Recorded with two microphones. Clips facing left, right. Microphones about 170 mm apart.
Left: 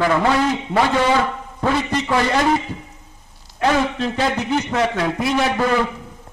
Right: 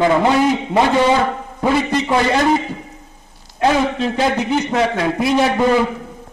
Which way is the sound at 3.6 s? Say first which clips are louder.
Right 3 dB; 10° right (ahead or behind).